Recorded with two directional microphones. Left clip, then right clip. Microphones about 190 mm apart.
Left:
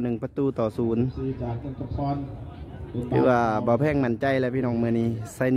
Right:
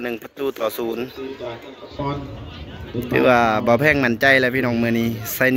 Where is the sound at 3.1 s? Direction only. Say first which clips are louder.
Right 6 dB; 20° left (ahead or behind).